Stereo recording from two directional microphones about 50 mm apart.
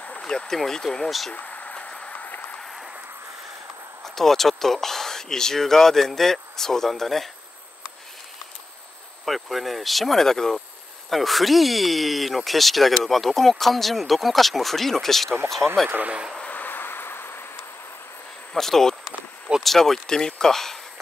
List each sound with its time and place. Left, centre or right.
0.2 s speech: centre
1.3 s a sound: left
2.1 s a sound: left
4.0 s speech: centre
9.2 s speech: centre
15.6 s speech: right
16.4 s vehicle: left
18.5 s speech: centre